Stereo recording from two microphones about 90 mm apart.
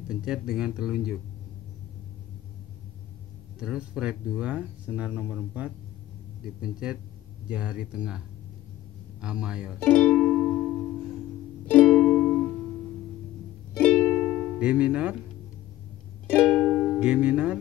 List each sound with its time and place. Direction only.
0.1 s speech: 10° right (ahead or behind)
3.5 s speech: 10° right (ahead or behind)
9.2 s speech: 10° right (ahead or behind)
9.8 s speech: 15° left (ahead or behind)
11.6 s music: 15° left (ahead or behind)
13.7 s music: 10° left (ahead or behind)
14.2 s music: 10° right (ahead or behind)
16.3 s music: 10° left (ahead or behind)
17.0 s speech: 10° right (ahead or behind)